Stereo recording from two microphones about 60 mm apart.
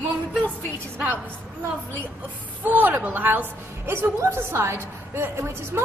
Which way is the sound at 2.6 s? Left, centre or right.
Right.